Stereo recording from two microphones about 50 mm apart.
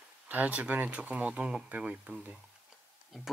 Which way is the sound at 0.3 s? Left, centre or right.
Right.